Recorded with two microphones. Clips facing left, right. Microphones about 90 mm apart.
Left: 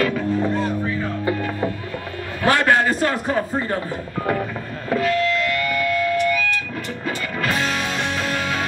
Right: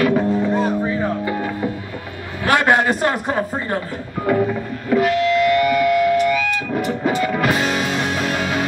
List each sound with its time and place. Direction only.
0.0 s music: 20° right (ahead or behind)
2.5 s a sound: 20° right (ahead or behind)
4.9 s music: 20° right (ahead or behind)